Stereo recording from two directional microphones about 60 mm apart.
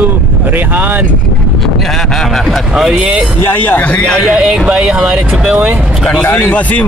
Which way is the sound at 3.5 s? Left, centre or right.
Left.